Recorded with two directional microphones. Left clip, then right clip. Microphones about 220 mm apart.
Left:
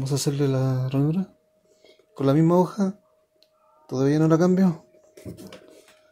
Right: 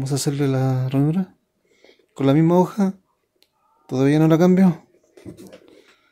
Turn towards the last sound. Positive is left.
turn(degrees=-30)  # may be behind; listen again after turning